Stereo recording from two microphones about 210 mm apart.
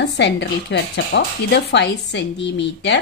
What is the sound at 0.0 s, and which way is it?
A woman's voice, 55° left (ahead or behind).